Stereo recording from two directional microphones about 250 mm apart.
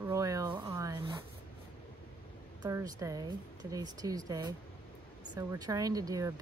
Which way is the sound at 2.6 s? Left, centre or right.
Centre.